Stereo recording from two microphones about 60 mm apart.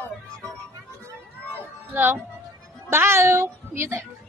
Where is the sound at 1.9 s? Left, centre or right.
Right.